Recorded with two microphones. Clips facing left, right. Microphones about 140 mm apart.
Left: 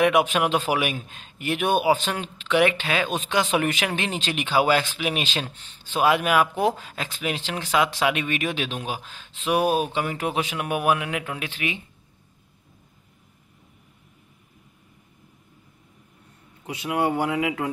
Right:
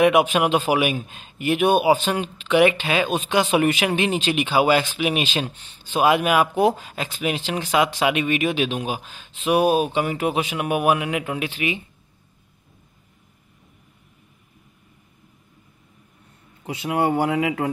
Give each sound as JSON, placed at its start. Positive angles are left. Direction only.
{"t": 0.0, "sound": "speech", "side_deg": -10}
{"t": 16.6, "sound": "a man's voice", "side_deg": -30}